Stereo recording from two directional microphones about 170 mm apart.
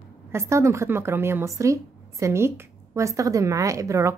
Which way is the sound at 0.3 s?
15° right (ahead or behind).